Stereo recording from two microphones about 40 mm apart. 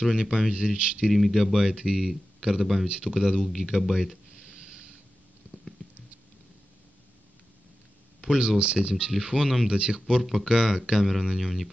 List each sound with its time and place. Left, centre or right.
0.0 s speech: centre
0.7 s speech: right
1.0 s speech: centre
1.6 s speech: centre
3.3 s speech: centre
4.5 s a sound: centre
5.4 s patter: right
8.4 s speech: right
10.2 s speech: centre